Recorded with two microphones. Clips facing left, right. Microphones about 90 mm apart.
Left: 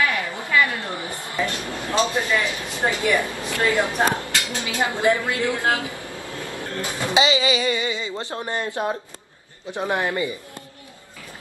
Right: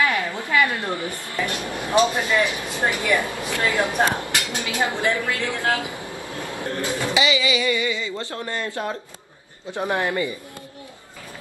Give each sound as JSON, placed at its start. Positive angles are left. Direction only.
{"t": 0.0, "sound": "a sound", "side_deg": -20}
{"t": 0.9, "sound": "a sound", "side_deg": 20}
{"t": 1.6, "sound": "a man's voice", "side_deg": -20}
{"t": 2.4, "sound": "speech", "side_deg": 20}
{"t": 3.2, "sound": "speech", "side_deg": -20}
{"t": 5.0, "sound": "speech", "side_deg": 20}
{"t": 5.8, "sound": "vehicle", "side_deg": -20}
{"t": 6.8, "sound": "a man's voice", "side_deg": 20}